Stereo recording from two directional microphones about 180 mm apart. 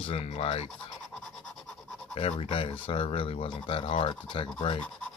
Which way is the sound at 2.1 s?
35° left (ahead or behind).